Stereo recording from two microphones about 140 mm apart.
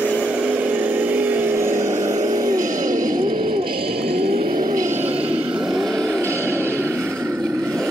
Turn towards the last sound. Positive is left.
turn(degrees=-15)  # may be behind; listen again after turning